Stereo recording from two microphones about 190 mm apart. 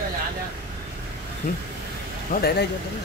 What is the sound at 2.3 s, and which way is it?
Speech, 55° left (ahead or behind).